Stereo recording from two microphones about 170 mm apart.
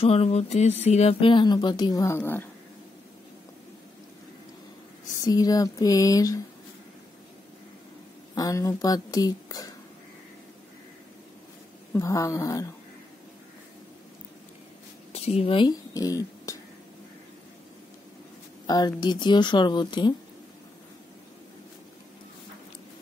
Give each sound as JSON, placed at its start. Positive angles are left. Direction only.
{"t": 0.0, "sound": "speech", "side_deg": 35}
{"t": 5.2, "sound": "a woman's voice", "side_deg": 20}
{"t": 8.4, "sound": "a woman's voice", "side_deg": 20}
{"t": 12.0, "sound": "a woman's voice", "side_deg": 20}
{"t": 15.1, "sound": "speech", "side_deg": 40}
{"t": 18.7, "sound": "a woman's voice", "side_deg": 25}